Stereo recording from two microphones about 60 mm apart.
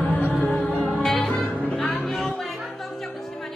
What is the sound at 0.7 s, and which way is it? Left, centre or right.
Music, left.